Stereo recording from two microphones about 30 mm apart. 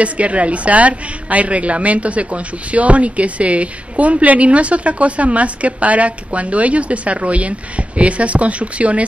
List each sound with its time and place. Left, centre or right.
0.0 s a woman's voice: right